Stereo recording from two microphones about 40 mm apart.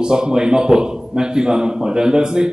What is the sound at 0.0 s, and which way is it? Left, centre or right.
A man's voice, centre.